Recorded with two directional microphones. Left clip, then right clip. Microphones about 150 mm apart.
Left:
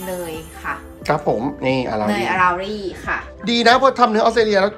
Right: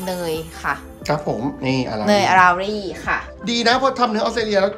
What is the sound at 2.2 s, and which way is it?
Speech, 60° right (ahead or behind).